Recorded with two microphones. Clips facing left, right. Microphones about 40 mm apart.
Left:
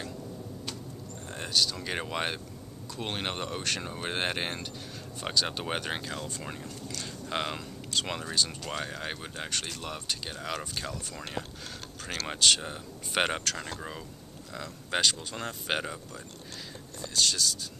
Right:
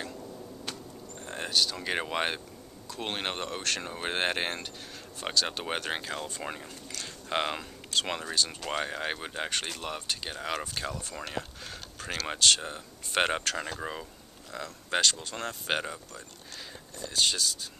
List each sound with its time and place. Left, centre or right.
0.0 s a sound: centre
1.2 s speech: centre
6.9 s a sound: centre
8.6 s speech: centre
12.3 s speech: centre
13.6 s speech: centre
14.5 s speech: centre
17.1 s speech: centre